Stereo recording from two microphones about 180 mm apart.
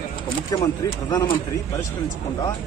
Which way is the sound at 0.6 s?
20° left (ahead or behind).